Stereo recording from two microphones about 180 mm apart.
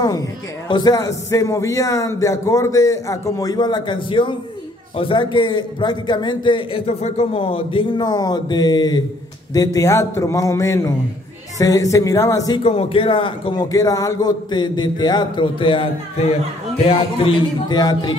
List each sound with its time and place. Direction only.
0.7 s a man's voice: 25° left (ahead or behind)
12.6 s a man's voice: 30° left (ahead or behind)